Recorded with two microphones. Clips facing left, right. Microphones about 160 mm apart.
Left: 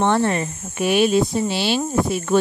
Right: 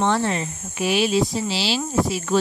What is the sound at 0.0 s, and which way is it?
Speech, 55° left (ahead or behind).